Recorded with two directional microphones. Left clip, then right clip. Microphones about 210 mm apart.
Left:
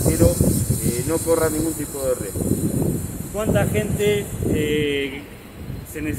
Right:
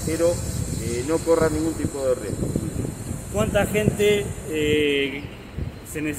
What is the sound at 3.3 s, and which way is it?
Speech, 10° right (ahead or behind).